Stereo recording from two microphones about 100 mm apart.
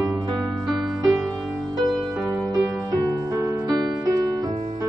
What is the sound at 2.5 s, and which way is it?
Music, 35° right (ahead or behind).